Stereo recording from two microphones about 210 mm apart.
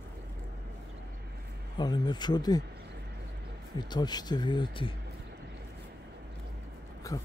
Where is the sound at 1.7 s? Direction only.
20° left (ahead or behind).